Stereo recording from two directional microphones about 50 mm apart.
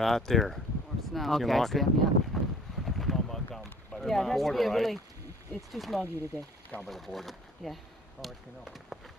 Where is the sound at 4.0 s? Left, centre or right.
Centre.